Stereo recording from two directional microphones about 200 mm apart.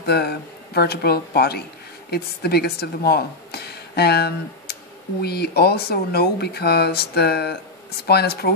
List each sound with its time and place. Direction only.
0.0 s speech: 55° left (ahead or behind)